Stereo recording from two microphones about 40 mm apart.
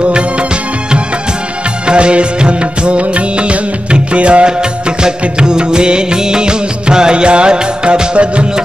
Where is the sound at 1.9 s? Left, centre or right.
Right.